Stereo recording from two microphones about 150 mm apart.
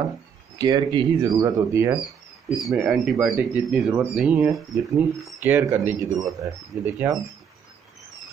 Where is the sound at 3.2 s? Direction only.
10° right (ahead or behind).